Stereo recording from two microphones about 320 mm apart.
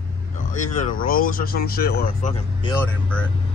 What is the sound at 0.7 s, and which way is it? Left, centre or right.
Speech, left.